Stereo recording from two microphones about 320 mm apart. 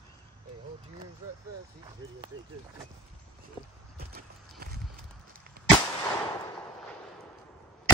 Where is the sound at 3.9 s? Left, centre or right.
Right.